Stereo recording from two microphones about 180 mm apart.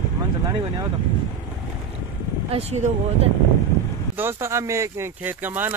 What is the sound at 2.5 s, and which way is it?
Speech, 35° right (ahead or behind).